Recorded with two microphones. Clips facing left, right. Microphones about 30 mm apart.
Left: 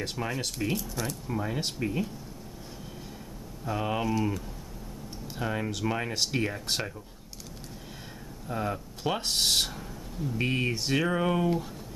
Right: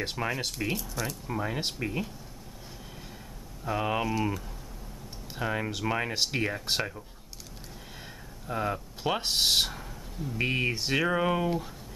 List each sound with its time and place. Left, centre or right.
0.0 s speech: centre
3.6 s speech: centre
8.5 s speech: centre